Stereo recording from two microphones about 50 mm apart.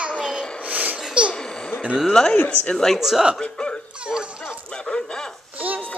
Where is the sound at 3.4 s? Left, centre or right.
Centre.